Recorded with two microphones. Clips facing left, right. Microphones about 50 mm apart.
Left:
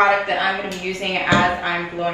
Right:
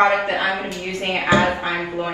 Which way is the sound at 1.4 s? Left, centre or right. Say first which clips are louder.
Left 1 dB; left.